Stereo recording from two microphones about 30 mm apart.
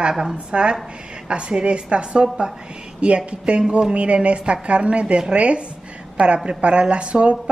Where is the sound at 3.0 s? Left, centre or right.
Right.